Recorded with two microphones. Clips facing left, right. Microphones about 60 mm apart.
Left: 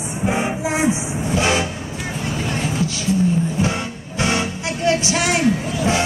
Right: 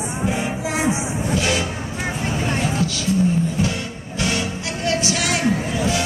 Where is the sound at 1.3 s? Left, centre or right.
Left.